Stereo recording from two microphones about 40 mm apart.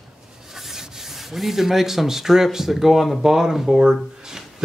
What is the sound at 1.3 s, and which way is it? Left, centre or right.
Speech, centre.